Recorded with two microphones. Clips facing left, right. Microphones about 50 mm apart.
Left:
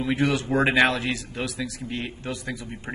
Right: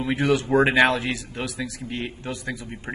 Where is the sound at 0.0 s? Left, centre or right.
Centre.